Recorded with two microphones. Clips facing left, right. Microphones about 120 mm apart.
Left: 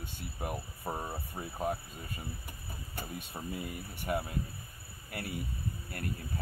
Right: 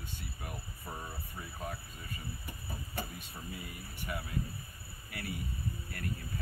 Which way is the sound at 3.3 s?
55° left (ahead or behind).